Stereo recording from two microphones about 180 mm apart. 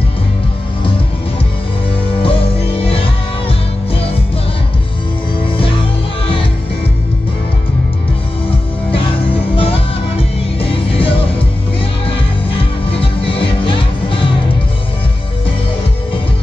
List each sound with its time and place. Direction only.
2.2 s music: 30° left (ahead or behind)
9.6 s music: 30° left (ahead or behind)
12.9 s music: 30° left (ahead or behind)